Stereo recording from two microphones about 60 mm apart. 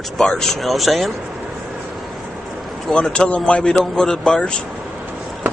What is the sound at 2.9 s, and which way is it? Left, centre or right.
A man's voice, centre.